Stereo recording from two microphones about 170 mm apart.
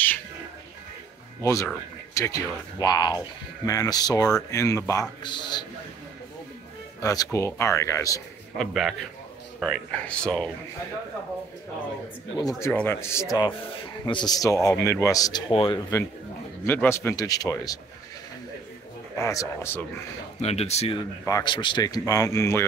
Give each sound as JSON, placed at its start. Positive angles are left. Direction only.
{"t": 1.4, "sound": "speech", "side_deg": 20}
{"t": 7.0, "sound": "speech", "side_deg": 20}
{"t": 8.5, "sound": "speech", "side_deg": 0}
{"t": 12.4, "sound": "speech", "side_deg": 15}
{"t": 16.6, "sound": "speech", "side_deg": 10}
{"t": 19.1, "sound": "speech", "side_deg": 20}
{"t": 20.3, "sound": "speech", "side_deg": 40}
{"t": 21.3, "sound": "speech", "side_deg": 25}